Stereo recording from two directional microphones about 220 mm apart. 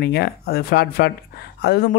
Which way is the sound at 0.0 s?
45° left (ahead or behind).